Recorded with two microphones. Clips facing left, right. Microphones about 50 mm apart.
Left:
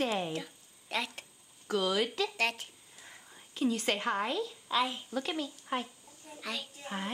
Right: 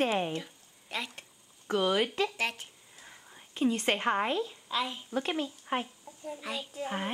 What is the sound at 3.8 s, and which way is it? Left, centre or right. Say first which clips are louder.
Speech: right 3 dB; right.